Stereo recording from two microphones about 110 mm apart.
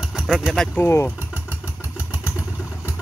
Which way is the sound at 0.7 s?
25° left (ahead or behind).